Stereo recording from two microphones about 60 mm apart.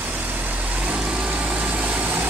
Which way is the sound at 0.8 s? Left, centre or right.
Right.